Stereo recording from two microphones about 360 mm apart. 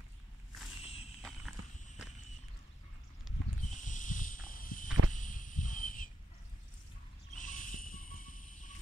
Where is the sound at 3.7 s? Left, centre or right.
Left.